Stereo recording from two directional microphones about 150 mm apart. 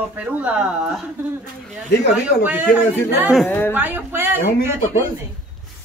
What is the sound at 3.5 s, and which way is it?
Speech, 15° left (ahead or behind).